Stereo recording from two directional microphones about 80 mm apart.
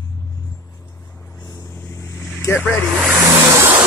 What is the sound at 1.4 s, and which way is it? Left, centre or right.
Vehicle, left.